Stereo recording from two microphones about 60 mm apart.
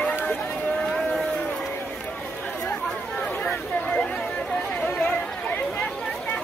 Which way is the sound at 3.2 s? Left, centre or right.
Centre.